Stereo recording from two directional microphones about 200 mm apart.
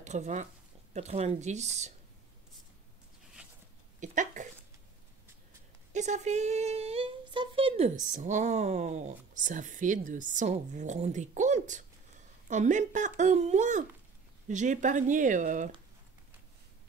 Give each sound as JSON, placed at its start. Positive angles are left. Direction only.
{"t": 0.0, "sound": "a woman's voice", "side_deg": -35}
{"t": 4.0, "sound": "a sound", "side_deg": -40}
{"t": 5.9, "sound": "a woman's voice", "side_deg": -35}